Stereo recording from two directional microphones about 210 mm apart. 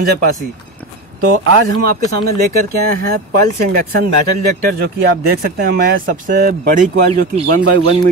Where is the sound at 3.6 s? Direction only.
45° right (ahead or behind).